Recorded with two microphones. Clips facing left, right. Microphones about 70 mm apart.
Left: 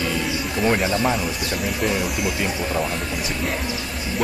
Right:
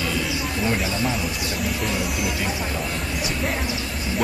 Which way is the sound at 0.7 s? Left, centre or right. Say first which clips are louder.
Left 6 dB; left.